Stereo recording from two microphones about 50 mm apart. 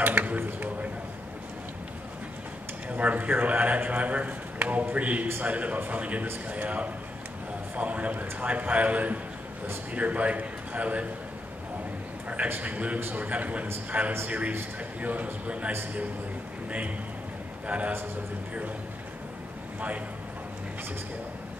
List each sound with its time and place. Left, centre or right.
0.0 s speech: right
3.0 s a man's voice: right
12.4 s a man's voice: right
17.6 s a man's voice: right